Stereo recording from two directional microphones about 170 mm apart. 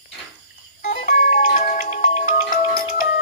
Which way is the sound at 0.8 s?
50° left (ahead or behind).